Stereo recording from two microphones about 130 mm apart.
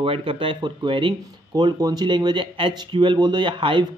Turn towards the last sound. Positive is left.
turn(degrees=-40)  # may be behind; listen again after turning